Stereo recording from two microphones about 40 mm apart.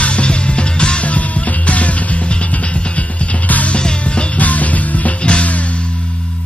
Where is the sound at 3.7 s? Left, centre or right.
Left.